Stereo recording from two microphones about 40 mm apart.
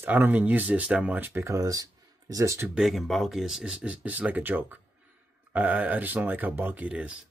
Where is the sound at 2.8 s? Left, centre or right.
Centre.